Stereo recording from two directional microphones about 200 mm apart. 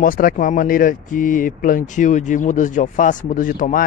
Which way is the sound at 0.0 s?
45° left (ahead or behind).